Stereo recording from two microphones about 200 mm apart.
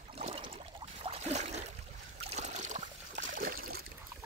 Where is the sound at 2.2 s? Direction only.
35° right (ahead or behind).